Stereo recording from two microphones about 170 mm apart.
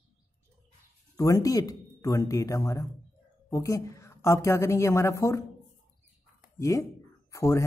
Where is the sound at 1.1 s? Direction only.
20° left (ahead or behind).